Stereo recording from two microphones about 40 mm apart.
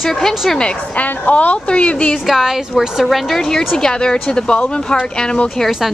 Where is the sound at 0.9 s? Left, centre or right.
Left.